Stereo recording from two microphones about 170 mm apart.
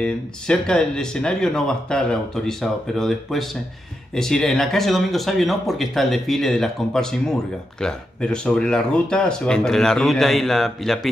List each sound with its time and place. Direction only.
0.0 s speech: 5° left (ahead or behind)